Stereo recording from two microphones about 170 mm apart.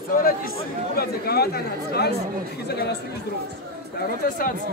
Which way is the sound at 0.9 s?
65° left (ahead or behind).